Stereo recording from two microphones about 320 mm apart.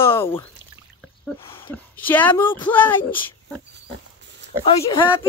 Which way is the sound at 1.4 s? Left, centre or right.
Centre.